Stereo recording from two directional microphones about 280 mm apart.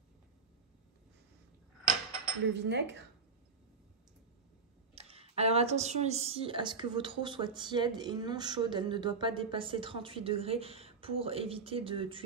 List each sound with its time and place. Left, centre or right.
2.6 s dishes: right
4.9 s speech: right